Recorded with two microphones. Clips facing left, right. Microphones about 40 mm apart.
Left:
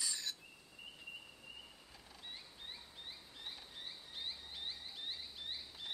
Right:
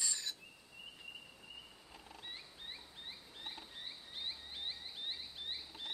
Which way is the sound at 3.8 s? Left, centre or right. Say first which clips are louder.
Right 1 dB; centre.